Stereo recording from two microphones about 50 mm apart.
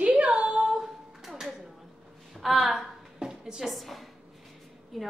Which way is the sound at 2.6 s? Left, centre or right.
Centre.